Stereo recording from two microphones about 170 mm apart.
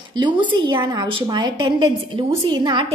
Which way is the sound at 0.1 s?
25° right (ahead or behind).